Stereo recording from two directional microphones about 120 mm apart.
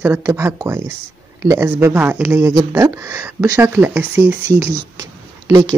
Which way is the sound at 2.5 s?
25° right (ahead or behind).